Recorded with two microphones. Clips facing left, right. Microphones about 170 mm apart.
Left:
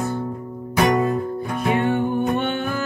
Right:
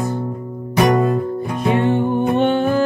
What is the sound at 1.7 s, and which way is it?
Music, 30° right (ahead or behind).